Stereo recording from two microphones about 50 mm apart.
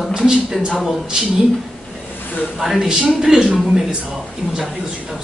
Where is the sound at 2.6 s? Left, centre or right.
Centre.